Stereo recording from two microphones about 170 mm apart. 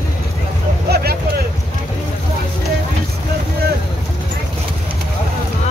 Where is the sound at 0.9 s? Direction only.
65° right (ahead or behind).